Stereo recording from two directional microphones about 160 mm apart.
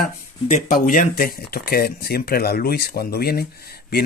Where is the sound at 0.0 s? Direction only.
45° left (ahead or behind).